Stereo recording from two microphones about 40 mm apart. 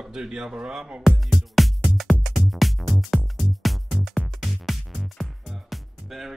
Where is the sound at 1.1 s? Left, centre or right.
Centre.